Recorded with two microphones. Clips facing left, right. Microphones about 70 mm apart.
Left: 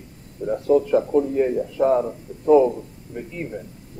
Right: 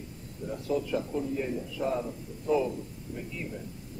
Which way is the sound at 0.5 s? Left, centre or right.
Left.